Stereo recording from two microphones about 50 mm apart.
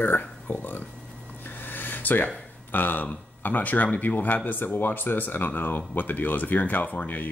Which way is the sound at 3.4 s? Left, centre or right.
Left.